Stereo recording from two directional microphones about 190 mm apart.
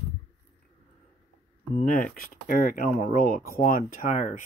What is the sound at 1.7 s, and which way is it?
Speech, 45° left (ahead or behind).